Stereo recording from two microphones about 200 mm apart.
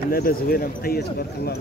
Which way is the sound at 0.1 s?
50° left (ahead or behind).